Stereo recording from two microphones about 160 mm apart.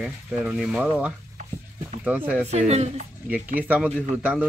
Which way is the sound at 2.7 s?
45° right (ahead or behind).